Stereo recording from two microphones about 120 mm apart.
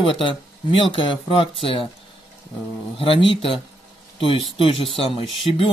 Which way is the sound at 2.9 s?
50° left (ahead or behind).